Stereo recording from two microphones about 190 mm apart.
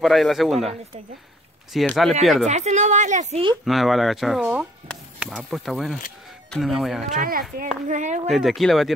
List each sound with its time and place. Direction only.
0.0 s speech: centre (ahead or behind)
2.4 s a woman's voice: 40° right (ahead or behind)
3.6 s speech: centre (ahead or behind)
7.2 s a woman's voice: 50° right (ahead or behind)
8.3 s speech: centre (ahead or behind)